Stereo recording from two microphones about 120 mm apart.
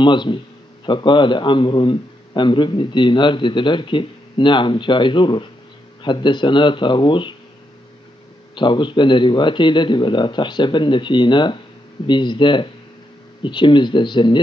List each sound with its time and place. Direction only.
0.0 s a man's voice: 40° left (ahead or behind)
8.5 s a man's voice: 40° left (ahead or behind)